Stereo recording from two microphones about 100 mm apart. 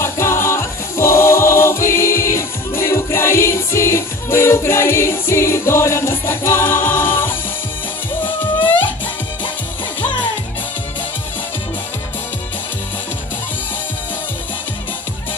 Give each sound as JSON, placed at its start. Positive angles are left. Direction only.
{"t": 0.0, "sound": "music", "side_deg": 25}